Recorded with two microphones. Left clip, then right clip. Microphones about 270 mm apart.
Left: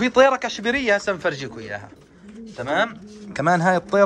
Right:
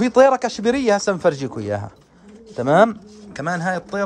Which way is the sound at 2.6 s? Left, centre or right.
Right.